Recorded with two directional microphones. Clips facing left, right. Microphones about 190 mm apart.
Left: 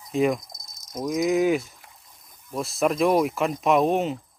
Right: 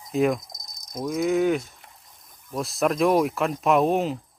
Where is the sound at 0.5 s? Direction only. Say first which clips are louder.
Even; 20° right (ahead or behind).